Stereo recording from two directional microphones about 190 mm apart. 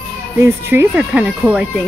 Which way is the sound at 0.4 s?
15° right (ahead or behind).